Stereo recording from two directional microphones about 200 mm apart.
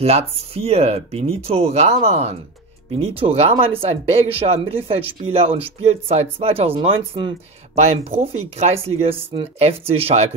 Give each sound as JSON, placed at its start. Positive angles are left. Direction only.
{"t": 0.0, "sound": "speech", "side_deg": -30}